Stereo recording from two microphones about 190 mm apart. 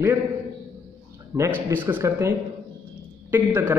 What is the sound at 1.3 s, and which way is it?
Speech, 15° right (ahead or behind).